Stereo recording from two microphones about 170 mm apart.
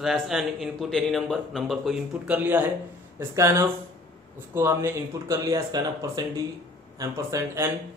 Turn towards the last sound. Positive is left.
turn(degrees=-20)  # may be behind; listen again after turning